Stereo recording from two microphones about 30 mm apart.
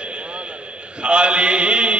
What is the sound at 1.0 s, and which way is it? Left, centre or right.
Mantra, right.